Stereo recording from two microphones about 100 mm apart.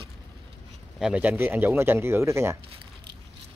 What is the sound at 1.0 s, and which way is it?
Speech, 15° right (ahead or behind).